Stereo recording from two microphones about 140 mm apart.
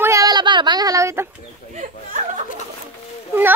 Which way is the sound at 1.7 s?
60° right (ahead or behind).